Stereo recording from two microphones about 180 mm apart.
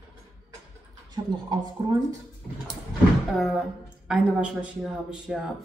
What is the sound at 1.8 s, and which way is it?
Speech, 25° right (ahead or behind).